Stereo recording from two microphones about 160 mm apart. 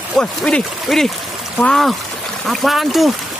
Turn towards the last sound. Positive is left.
turn(degrees=0)  # may be behind; listen again after turning